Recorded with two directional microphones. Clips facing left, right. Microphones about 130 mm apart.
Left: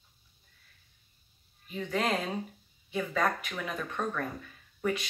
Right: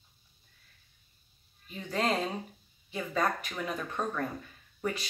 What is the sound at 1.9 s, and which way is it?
Speech, 30° right (ahead or behind).